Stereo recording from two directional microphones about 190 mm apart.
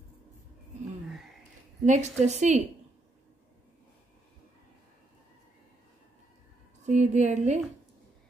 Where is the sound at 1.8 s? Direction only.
40° right (ahead or behind).